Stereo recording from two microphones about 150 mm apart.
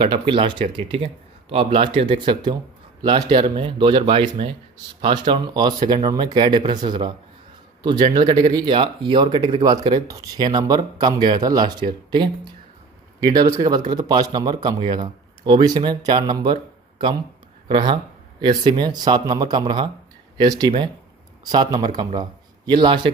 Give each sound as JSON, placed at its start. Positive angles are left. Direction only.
{"t": 0.0, "sound": "speech", "side_deg": -30}
{"t": 17.6, "sound": "speech", "side_deg": -30}